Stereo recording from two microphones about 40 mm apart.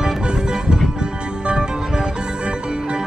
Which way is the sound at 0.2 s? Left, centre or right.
Right.